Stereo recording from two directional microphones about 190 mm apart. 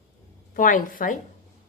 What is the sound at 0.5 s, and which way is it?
Speech, 45° left (ahead or behind).